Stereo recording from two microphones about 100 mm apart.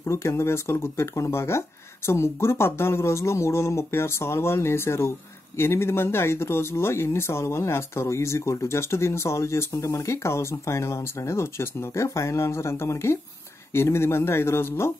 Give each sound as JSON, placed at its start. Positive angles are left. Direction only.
{"t": 0.0, "sound": "speech", "side_deg": 30}